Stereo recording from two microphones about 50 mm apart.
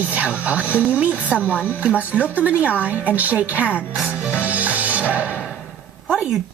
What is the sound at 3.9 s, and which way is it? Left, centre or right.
Music, centre.